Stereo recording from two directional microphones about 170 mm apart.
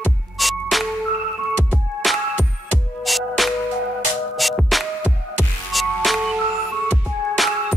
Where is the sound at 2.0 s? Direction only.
Centre (ahead or behind).